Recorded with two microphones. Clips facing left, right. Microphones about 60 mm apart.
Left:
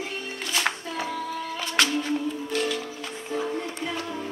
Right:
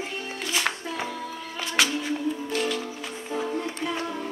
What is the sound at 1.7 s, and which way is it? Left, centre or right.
Music, centre.